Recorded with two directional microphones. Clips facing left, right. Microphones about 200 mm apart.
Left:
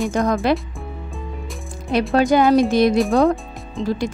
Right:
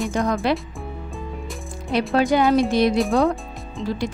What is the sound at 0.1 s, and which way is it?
Speech, 45° left (ahead or behind).